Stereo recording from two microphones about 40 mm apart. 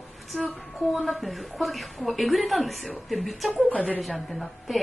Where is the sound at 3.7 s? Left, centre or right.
Left.